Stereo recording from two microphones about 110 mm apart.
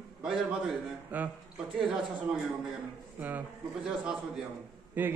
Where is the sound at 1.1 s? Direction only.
15° right (ahead or behind).